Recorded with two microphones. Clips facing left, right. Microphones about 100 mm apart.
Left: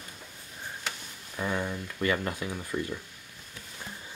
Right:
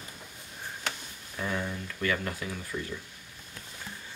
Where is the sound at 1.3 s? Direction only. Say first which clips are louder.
Left 2 dB; 15° left (ahead or behind).